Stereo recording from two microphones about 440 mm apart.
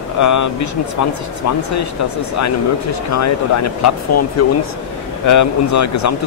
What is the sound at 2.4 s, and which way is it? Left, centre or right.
Speech, left.